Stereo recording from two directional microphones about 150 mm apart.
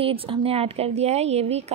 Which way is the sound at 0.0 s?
40° right (ahead or behind).